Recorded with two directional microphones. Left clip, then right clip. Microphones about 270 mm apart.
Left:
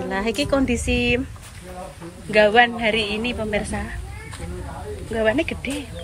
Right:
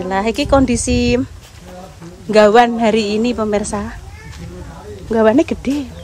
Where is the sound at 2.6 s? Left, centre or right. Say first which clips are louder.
Right 5 dB; right.